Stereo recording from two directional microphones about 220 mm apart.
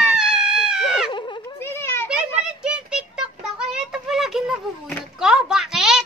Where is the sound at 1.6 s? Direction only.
10° left (ahead or behind).